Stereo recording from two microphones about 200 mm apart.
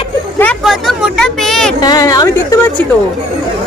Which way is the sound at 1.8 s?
20° left (ahead or behind).